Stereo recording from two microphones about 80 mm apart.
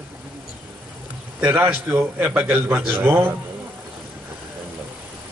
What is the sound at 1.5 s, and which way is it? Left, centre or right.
Speech, right.